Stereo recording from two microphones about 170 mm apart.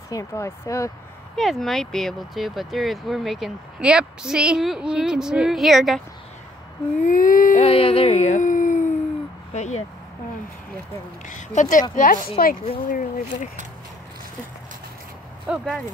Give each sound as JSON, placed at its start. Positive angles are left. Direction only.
{"t": 0.1, "sound": "speech", "side_deg": 20}
{"t": 1.3, "sound": "speech", "side_deg": 0}
{"t": 7.0, "sound": "a sound", "side_deg": 50}
{"t": 7.6, "sound": "speech", "side_deg": 35}
{"t": 11.2, "sound": "a sound", "side_deg": 45}
{"t": 12.4, "sound": "speech", "side_deg": 55}
{"t": 15.4, "sound": "speech", "side_deg": 0}